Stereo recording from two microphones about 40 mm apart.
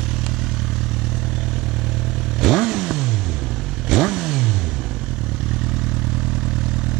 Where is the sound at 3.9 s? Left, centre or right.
Centre.